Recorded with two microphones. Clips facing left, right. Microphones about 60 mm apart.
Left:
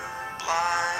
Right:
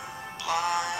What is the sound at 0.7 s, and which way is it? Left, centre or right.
Synthetic singing, left.